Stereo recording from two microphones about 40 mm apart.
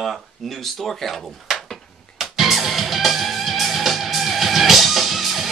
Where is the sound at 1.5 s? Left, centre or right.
Centre.